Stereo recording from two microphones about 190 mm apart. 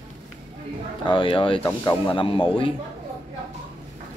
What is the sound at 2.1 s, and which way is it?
Speech, 25° left (ahead or behind).